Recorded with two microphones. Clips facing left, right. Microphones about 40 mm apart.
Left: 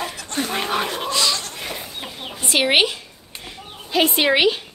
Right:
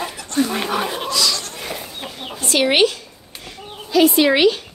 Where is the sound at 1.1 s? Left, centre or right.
Left.